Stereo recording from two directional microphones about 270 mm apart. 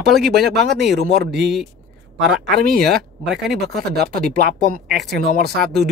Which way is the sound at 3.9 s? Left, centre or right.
Right.